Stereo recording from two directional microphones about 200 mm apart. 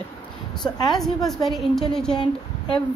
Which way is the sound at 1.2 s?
Centre (ahead or behind).